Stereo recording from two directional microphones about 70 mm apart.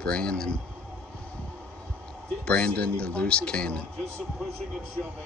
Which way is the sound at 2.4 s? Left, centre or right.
Centre.